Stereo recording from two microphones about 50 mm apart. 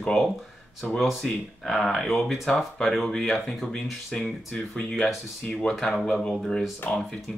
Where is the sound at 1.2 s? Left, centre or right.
Centre.